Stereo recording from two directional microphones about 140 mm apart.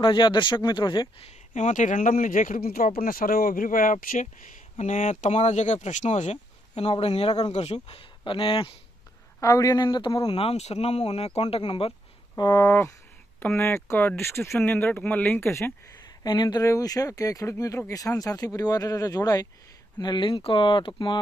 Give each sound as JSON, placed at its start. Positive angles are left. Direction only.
{"t": 0.0, "sound": "speech", "side_deg": 35}
{"t": 1.2, "sound": "speech", "side_deg": 60}
{"t": 4.7, "sound": "speech", "side_deg": 55}
{"t": 9.4, "sound": "speech", "side_deg": 25}
{"t": 10.3, "sound": "speech", "side_deg": 45}
{"t": 12.4, "sound": "speech", "side_deg": 30}
{"t": 12.6, "sound": "speech", "side_deg": 20}
{"t": 16.3, "sound": "speech", "side_deg": 30}